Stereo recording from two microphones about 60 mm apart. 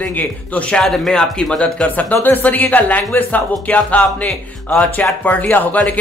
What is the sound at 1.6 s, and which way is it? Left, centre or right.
Speech, left.